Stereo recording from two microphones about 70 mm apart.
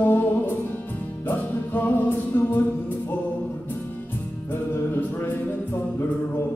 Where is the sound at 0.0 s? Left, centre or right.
Left.